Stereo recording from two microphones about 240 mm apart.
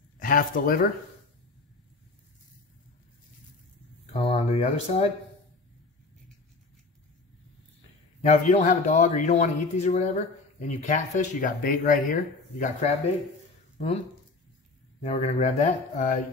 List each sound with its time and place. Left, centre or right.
0.2 s speech: left
4.1 s speech: left
8.2 s a man's voice: left
15.0 s speech: left